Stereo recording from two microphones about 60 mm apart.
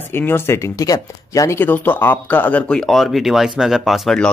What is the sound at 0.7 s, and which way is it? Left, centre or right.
Speech, left.